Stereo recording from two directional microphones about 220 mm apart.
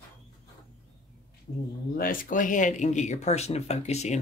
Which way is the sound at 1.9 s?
40° left (ahead or behind).